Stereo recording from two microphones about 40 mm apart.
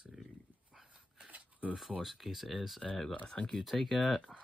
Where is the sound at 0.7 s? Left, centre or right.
Centre.